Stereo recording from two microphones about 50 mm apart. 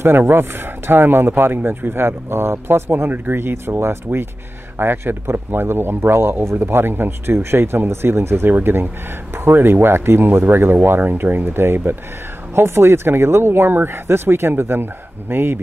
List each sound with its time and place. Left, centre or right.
0.2 s speech: right
8.5 s speech: right
12.5 s speech: right